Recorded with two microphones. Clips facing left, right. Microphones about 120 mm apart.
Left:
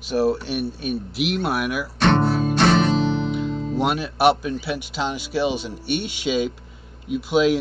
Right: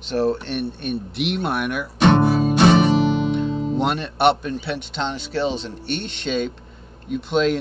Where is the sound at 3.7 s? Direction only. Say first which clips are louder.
Left 3 dB; 5° left (ahead or behind).